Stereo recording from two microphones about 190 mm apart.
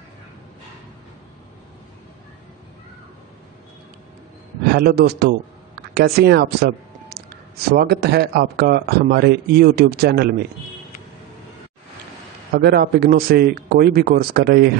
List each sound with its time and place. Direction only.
4.7 s speech: 55° right (ahead or behind)
12.5 s speech: 55° right (ahead or behind)